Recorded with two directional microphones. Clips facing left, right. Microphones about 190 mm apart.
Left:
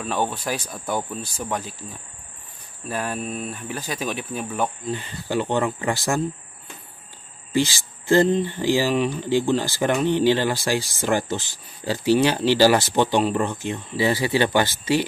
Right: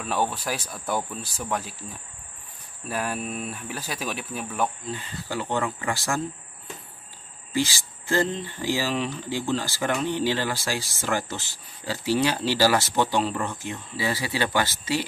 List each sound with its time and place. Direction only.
0.0 s speech: 5° right (ahead or behind)
2.9 s speech: 5° right (ahead or behind)
4.9 s speech: 20° left (ahead or behind)
7.5 s speech: 20° left (ahead or behind)